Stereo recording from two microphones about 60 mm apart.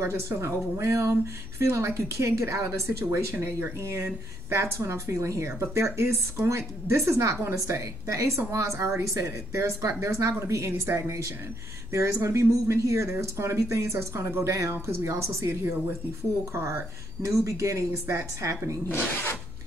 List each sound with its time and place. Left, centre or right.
0.0 s a woman's voice: right
18.9 s speech: left